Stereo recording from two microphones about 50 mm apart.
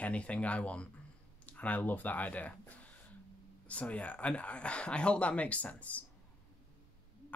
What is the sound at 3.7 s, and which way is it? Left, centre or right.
Speech, left.